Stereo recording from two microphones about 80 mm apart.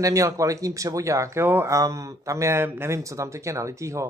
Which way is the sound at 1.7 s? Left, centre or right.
Right.